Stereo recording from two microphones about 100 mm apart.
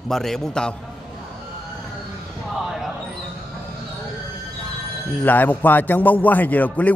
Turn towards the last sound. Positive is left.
turn(degrees=15)  # may be behind; listen again after turning